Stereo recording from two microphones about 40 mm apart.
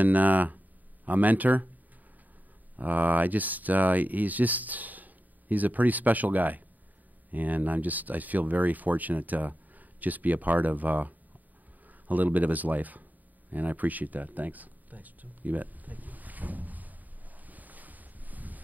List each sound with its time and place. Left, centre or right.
0.0 s speech: right
2.7 s speech: right
17.5 s boat: right